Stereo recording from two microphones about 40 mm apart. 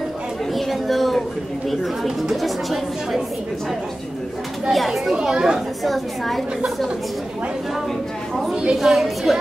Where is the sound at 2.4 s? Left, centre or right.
Centre.